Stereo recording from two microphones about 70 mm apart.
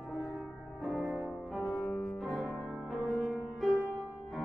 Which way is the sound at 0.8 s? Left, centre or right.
Centre.